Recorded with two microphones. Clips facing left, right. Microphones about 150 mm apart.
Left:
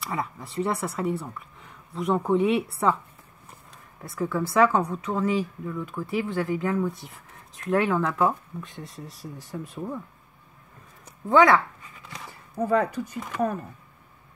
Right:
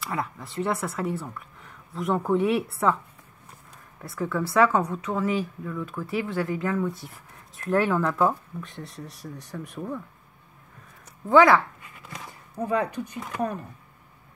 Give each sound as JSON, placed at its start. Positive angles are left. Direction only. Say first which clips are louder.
{"t": 0.0, "sound": "speech", "louder": "even", "side_deg": 0}
{"t": 4.0, "sound": "speech", "louder": "left 1 dB", "side_deg": 0}
{"t": 6.4, "sound": "speech", "louder": "left 1 dB", "side_deg": 20}
{"t": 6.8, "sound": "speech", "louder": "even", "side_deg": 0}
{"t": 11.2, "sound": "a sound", "louder": "right 1 dB", "side_deg": 0}
{"t": 12.6, "sound": "speech", "louder": "left 3 dB", "side_deg": -15}